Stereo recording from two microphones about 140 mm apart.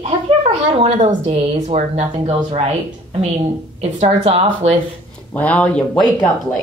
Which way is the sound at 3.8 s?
45° right (ahead or behind).